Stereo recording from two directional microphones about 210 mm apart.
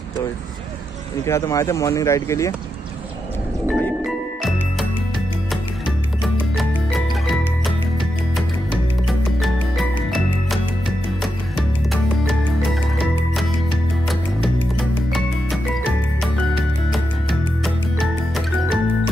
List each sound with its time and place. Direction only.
1.2 s speech: 15° left (ahead or behind)
3.6 s music: 5° left (ahead or behind)
6.2 s music: centre (ahead or behind)
9.0 s music: centre (ahead or behind)